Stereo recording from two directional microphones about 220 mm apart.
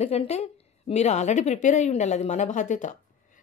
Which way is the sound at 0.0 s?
30° left (ahead or behind).